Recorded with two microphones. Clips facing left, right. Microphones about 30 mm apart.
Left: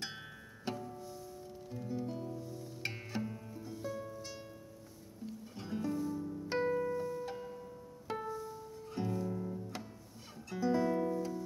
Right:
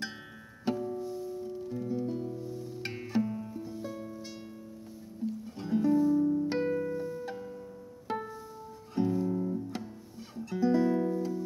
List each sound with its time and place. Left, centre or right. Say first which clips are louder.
0.7 s music: right 9 dB; centre
5.2 s music: right 9 dB; centre
6.1 s keyboard: right 14 dB; right
6.4 s music: right 3 dB; centre
8.1 s music: right 3 dB; centre